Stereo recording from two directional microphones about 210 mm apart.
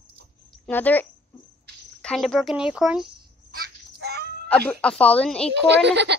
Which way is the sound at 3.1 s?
45° right (ahead or behind).